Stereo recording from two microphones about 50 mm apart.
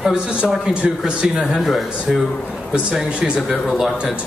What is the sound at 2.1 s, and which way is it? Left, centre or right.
Speech, right.